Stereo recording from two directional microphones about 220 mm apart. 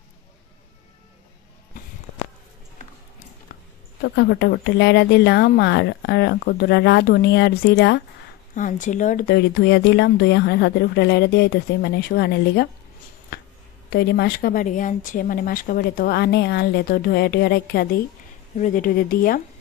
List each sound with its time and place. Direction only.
4.0 s speech: 55° left (ahead or behind)
8.5 s speech: 35° left (ahead or behind)
13.3 s a sound: 45° left (ahead or behind)
13.8 s a woman's voice: 45° left (ahead or behind)